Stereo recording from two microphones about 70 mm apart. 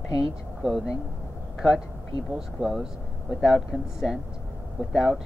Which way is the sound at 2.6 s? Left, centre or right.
Centre.